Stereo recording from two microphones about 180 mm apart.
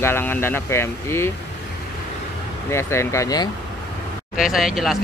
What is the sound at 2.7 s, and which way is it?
Speech, 15° left (ahead or behind).